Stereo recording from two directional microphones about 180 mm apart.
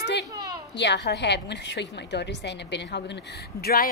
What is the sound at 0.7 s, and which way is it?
A woman's voice, 75° left (ahead or behind).